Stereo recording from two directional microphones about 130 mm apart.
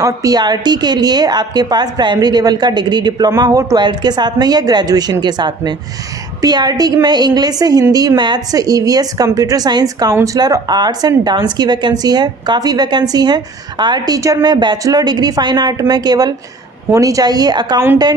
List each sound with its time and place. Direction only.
0.0 s a woman's voice: 30° right (ahead or behind)